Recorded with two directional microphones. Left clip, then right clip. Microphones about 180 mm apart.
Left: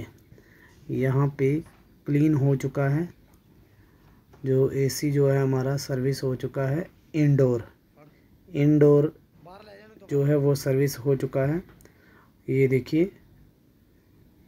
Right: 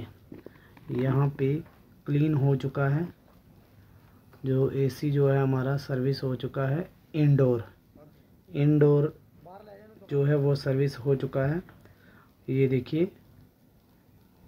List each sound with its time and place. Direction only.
0.9 s speech: 20° left (ahead or behind)
4.4 s speech: 10° left (ahead or behind)
9.5 s a sound: 5° right (ahead or behind)
10.0 s speech: 15° left (ahead or behind)